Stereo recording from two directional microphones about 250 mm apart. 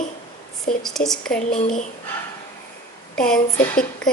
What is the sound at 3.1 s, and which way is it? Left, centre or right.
Speech, centre.